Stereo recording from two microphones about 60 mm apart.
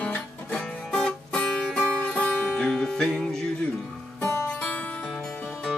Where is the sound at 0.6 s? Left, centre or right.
Centre.